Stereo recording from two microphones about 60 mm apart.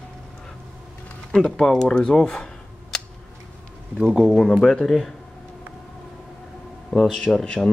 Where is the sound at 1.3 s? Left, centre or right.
Centre.